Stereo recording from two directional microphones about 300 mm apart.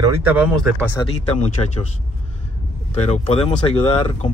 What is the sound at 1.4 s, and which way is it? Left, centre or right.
Speech, left.